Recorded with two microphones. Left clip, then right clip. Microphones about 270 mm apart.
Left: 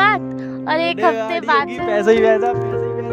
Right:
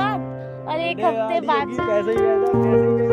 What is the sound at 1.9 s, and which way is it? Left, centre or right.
Music, left.